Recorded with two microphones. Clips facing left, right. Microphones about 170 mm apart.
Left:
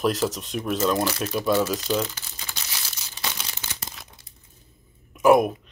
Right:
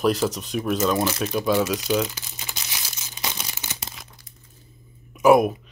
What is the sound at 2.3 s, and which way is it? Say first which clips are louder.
Crumpling: right 1 dB; 15° right (ahead or behind).